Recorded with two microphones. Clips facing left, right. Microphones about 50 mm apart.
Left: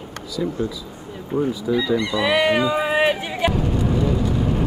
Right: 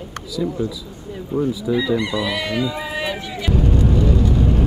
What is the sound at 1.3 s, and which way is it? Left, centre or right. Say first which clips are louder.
Speech: right 1 dB; left.